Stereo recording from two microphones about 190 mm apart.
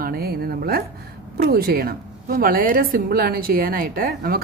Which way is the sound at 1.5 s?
50° right (ahead or behind).